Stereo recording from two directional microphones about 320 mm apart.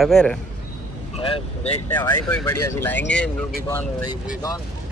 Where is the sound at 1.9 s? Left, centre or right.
Centre.